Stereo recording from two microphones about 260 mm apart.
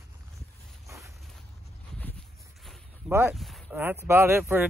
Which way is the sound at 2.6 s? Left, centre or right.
Centre.